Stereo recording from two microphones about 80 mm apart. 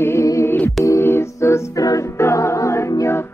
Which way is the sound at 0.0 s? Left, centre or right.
Left.